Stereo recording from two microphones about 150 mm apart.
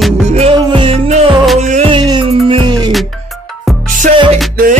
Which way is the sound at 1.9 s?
30° right (ahead or behind).